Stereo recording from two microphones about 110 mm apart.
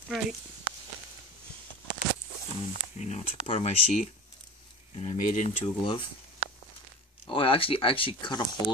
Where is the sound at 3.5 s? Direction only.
70° left (ahead or behind).